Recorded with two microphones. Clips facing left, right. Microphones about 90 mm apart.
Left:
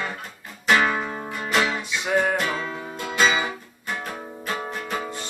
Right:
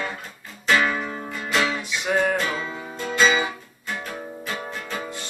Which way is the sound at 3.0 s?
10° left (ahead or behind).